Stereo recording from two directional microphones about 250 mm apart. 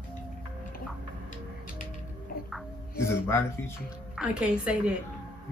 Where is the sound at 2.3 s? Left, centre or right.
Left.